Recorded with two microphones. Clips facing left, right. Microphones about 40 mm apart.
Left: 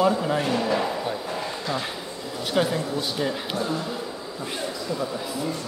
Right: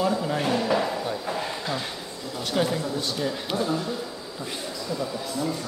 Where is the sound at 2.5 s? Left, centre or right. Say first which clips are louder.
Left 2 dB; centre.